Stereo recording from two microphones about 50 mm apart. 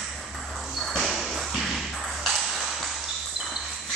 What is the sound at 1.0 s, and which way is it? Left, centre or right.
Ping, centre.